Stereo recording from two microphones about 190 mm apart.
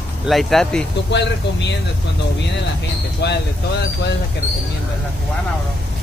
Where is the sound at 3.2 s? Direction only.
65° left (ahead or behind).